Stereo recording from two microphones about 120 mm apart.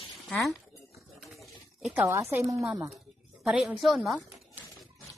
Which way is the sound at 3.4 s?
5° right (ahead or behind).